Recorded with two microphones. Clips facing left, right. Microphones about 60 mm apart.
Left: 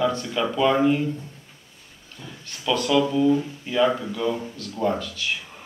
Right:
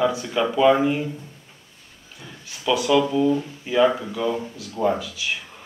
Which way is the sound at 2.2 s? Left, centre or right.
Centre.